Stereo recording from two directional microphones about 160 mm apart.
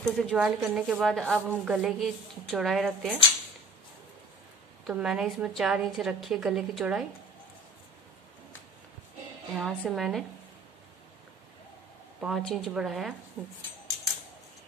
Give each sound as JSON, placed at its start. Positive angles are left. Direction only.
{"t": 0.0, "sound": "a woman's voice", "side_deg": 0}
{"t": 4.8, "sound": "a woman's voice", "side_deg": -5}
{"t": 9.6, "sound": "a woman's voice", "side_deg": 0}
{"t": 12.2, "sound": "a woman's voice", "side_deg": 0}